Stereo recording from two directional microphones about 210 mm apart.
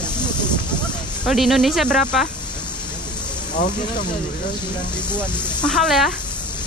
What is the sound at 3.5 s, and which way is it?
Speech, 40° left (ahead or behind).